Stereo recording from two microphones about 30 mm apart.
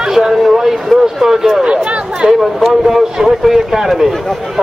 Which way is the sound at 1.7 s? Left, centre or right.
Right.